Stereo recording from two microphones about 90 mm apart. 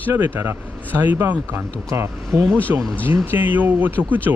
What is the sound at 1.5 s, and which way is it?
Speech, 30° right (ahead or behind).